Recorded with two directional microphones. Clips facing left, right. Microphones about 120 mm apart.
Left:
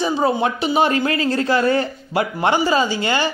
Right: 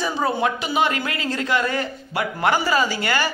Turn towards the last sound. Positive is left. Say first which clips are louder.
# left 2 dB
turn(degrees=25)  # may be behind; listen again after turning